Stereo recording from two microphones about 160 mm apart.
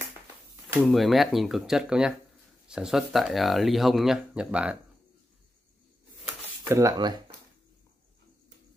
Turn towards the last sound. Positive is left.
turn(degrees=-25)  # may be behind; listen again after turning